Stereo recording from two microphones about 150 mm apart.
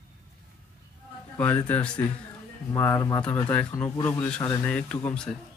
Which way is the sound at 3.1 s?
10° left (ahead or behind).